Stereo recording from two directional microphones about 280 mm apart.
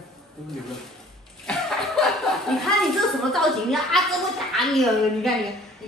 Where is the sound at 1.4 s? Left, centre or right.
Centre.